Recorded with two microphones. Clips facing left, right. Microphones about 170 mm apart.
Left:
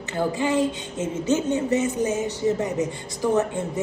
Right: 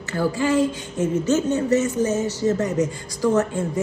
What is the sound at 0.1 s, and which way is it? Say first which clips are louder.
A woman's voice: right 2 dB; 20° left (ahead or behind).